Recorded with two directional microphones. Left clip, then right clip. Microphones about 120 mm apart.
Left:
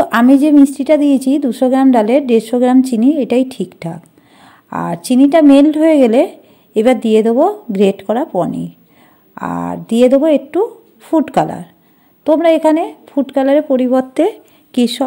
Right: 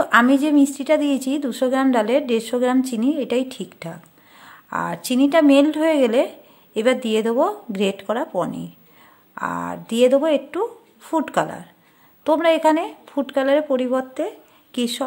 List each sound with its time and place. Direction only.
0.0 s a woman's voice: 25° left (ahead or behind)
12.3 s speech: 15° left (ahead or behind)
14.1 s speech: 50° left (ahead or behind)
14.7 s a woman's voice: 30° left (ahead or behind)